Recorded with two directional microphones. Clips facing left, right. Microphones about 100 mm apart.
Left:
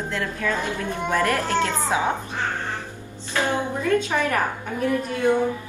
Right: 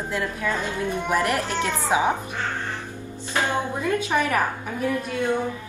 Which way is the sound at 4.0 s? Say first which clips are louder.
Right 1 dB; 15° right (ahead or behind).